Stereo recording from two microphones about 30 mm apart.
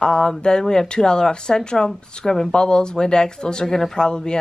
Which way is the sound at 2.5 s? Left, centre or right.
Left.